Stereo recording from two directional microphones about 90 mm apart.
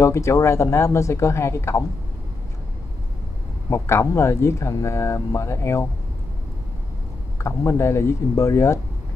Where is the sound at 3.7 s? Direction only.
30° left (ahead or behind).